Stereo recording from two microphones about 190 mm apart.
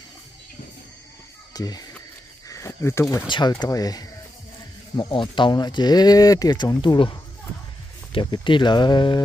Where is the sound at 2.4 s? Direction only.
15° left (ahead or behind).